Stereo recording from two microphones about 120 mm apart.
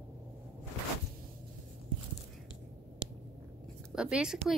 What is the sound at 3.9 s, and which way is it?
Speech, 10° right (ahead or behind).